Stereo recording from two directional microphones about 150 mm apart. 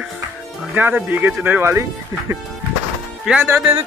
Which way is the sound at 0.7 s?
10° right (ahead or behind).